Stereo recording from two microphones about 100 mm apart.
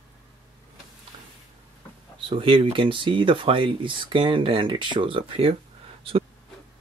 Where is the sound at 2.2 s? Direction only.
65° right (ahead or behind).